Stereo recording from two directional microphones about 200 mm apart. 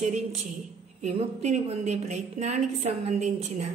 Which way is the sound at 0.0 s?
35° right (ahead or behind).